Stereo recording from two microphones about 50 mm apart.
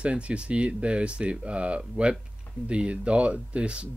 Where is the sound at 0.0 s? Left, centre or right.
Right.